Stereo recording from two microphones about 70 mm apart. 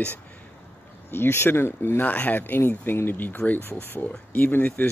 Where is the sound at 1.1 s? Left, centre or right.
Left.